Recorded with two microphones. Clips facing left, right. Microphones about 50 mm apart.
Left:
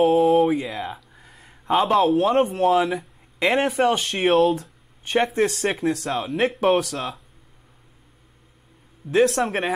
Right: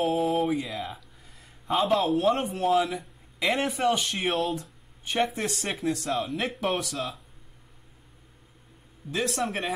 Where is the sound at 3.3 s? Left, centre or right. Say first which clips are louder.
Left 7 dB; left.